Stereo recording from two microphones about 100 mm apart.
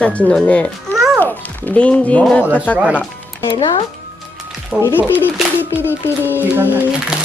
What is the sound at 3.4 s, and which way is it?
Speech, 50° left (ahead or behind).